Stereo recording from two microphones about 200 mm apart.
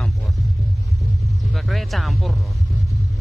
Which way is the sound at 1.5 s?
Centre (ahead or behind).